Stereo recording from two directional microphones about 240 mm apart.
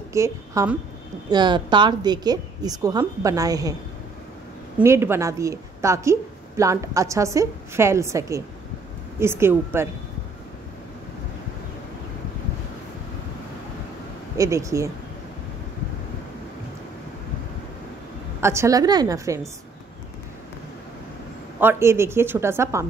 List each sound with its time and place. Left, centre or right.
0.1 s a woman's voice: centre
4.7 s a woman's voice: centre
14.3 s a woman's voice: centre
18.4 s a woman's voice: centre
21.5 s a woman's voice: centre